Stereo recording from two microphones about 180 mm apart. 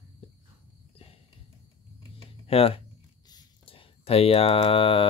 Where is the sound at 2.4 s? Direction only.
35° left (ahead or behind).